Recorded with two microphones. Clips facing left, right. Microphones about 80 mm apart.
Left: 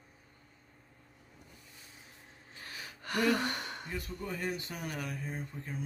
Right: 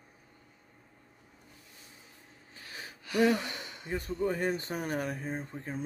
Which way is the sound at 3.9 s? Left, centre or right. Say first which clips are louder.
Right 10 dB; right.